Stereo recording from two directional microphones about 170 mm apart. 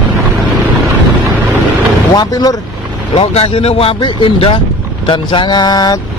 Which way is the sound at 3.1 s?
35° left (ahead or behind).